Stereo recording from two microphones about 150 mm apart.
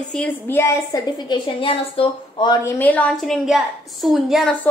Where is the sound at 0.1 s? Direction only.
10° left (ahead or behind).